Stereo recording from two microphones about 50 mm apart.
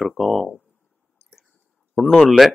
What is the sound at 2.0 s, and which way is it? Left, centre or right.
Speech, centre.